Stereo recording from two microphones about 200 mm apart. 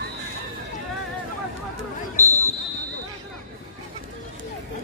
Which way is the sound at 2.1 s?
15° right (ahead or behind).